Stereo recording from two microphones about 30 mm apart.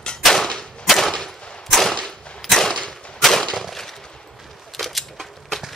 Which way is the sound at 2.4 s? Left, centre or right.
Centre.